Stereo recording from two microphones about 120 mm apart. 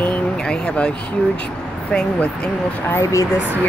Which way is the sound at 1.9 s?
5° left (ahead or behind).